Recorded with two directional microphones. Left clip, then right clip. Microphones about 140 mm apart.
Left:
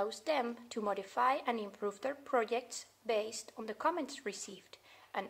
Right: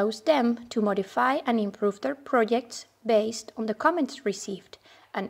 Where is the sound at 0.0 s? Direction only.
35° right (ahead or behind).